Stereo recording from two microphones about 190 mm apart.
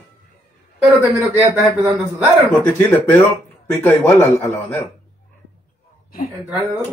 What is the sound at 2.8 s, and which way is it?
Speech, 10° left (ahead or behind).